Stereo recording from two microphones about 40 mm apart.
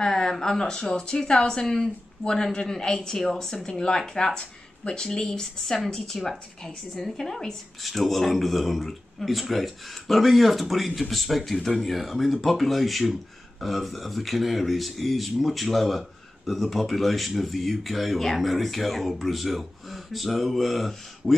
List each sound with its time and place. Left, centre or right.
0.0 s a woman's voice: centre